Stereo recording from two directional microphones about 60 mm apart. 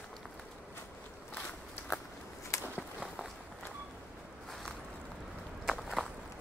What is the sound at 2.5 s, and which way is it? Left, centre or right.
Walk, left.